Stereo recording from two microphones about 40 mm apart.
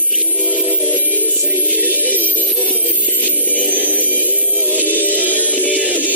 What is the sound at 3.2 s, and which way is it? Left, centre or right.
Music, left.